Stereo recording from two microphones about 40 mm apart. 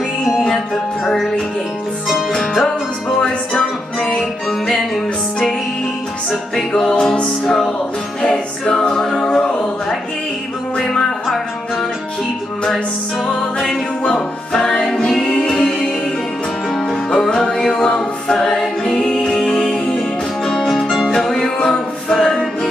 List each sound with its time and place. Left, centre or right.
2.3 s a capella: centre
3.2 s music: left
4.5 s music: centre
6.5 s a capella: centre
6.9 s music: centre
7.2 s a capella: centre
9.2 s music: left
10.8 s music: centre
13.3 s music: centre
14.0 s music: centre
17.9 s a capella: left
18.5 s music: centre
21.6 s a capella: centre